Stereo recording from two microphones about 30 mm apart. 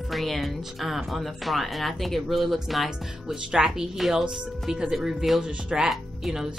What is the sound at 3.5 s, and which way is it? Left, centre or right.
Speech, right.